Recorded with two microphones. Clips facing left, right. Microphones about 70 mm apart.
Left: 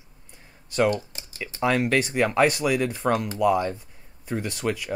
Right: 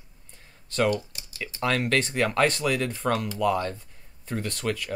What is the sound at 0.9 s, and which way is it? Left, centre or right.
Speech, left.